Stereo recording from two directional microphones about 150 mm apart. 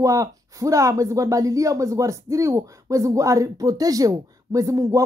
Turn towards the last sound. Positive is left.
turn(degrees=-20)  # may be behind; listen again after turning